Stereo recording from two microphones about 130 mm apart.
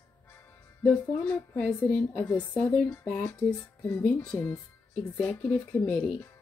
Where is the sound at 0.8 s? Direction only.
15° left (ahead or behind).